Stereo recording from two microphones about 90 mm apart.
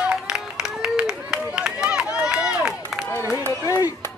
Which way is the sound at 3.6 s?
40° left (ahead or behind).